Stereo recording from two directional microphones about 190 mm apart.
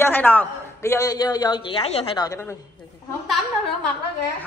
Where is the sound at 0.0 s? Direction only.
10° left (ahead or behind); by 2.2 s 30° left (ahead or behind).